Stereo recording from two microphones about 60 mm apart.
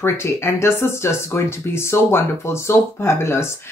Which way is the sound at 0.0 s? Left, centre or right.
Left.